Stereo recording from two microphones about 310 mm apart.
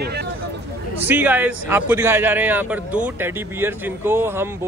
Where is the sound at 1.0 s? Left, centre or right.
Centre.